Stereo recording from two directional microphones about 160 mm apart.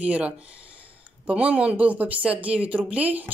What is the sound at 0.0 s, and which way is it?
Speech, 10° right (ahead or behind).